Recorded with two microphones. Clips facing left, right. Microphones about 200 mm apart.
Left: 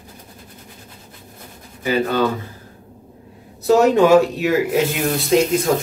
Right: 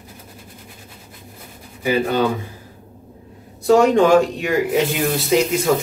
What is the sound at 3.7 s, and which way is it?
Speech, 5° left (ahead or behind).